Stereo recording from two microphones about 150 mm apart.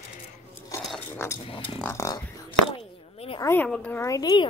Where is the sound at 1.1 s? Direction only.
15° left (ahead or behind).